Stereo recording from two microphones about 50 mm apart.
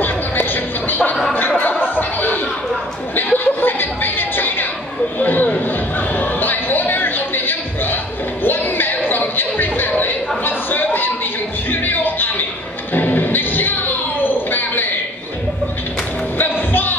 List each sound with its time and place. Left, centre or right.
0.0 s music: left
1.6 s a sound: left
3.2 s music: left
5.2 s a sound: left
11.7 s music: left
16.3 s music: left